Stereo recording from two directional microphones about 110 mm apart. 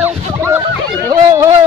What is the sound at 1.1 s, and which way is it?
Speech, 30° right (ahead or behind).